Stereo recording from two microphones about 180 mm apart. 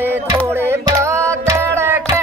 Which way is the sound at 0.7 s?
15° right (ahead or behind).